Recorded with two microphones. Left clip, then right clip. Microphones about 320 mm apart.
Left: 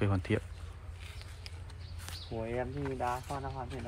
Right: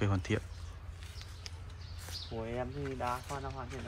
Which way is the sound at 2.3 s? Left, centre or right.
Left.